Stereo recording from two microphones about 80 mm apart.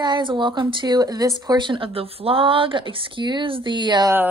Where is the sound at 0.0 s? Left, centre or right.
Right.